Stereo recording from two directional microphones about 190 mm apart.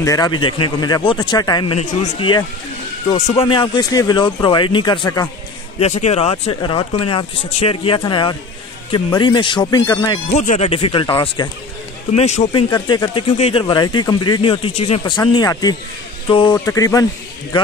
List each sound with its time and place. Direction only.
0.0 s speech: 20° left (ahead or behind)
5.8 s speech: 35° left (ahead or behind)
10.3 s speech: 40° left (ahead or behind)
12.1 s a man's voice: 35° left (ahead or behind)
12.6 s speech: 25° left (ahead or behind)